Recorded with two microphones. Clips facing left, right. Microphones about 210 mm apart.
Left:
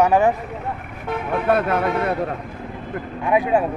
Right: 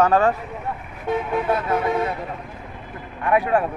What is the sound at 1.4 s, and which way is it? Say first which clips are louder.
Speech: left 7 dB; 65° left (ahead or behind).